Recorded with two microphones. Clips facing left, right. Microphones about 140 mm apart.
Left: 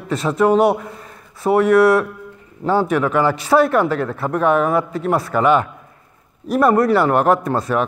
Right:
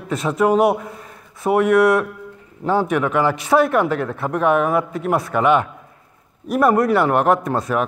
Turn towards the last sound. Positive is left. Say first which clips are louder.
# left 1 dB
turn(degrees=0)  # may be behind; listen again after turning